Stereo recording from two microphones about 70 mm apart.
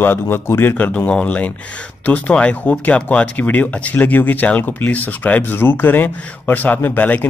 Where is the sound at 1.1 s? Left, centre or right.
Centre.